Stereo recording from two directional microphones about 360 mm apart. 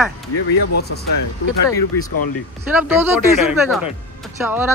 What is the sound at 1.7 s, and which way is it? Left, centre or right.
Speech, centre.